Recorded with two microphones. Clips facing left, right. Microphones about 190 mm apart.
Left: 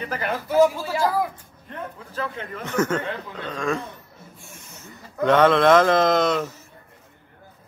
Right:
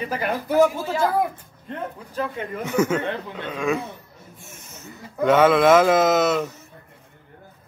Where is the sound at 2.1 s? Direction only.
10° right (ahead or behind).